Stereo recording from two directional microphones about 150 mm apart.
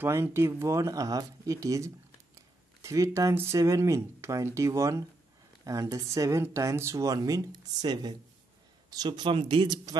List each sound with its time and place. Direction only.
0.0 s speech: 15° right (ahead or behind); by 9.9 s 30° right (ahead or behind)